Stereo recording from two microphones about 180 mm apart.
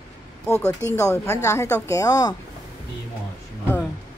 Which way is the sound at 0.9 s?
15° left (ahead or behind).